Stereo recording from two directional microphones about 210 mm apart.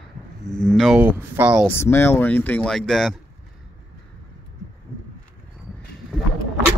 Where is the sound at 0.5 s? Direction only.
5° left (ahead or behind).